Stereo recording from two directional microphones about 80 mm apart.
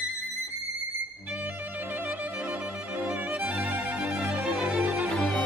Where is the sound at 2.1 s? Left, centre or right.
Centre.